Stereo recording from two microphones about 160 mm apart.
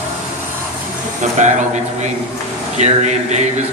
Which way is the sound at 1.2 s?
50° right (ahead or behind).